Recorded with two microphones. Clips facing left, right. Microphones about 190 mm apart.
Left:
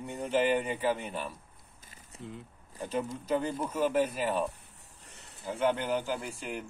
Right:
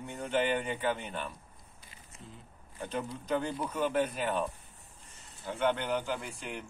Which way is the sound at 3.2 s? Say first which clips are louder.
Even; 5° left (ahead or behind).